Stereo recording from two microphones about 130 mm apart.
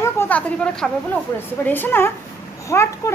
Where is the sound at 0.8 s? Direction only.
5° left (ahead or behind).